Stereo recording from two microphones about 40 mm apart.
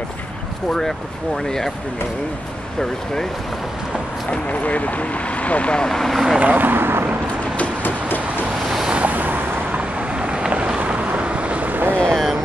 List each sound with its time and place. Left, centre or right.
0.7 s speech: centre
4.3 s speech: left
5.9 s speech: centre
6.1 s speech: centre
6.4 s speech: right
6.7 s vehicle: right
7.8 s a sound: left
8.9 s vehicle: right
9.8 s vehicle: right
11.2 s boat: right